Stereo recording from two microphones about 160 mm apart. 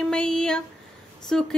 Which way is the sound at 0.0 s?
5° left (ahead or behind).